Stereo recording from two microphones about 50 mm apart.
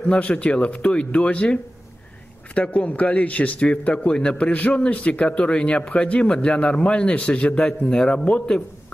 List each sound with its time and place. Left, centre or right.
0.0 s a man's voice: left